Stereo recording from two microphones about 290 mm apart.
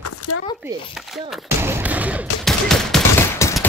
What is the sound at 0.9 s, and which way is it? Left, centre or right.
Speech, centre.